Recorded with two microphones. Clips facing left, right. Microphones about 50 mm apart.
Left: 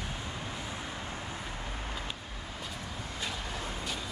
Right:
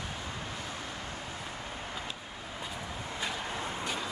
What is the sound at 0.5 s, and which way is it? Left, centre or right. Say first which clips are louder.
Vehicle: even; centre.